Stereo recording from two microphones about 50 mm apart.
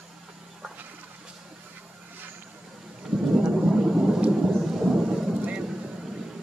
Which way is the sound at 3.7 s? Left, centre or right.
Centre.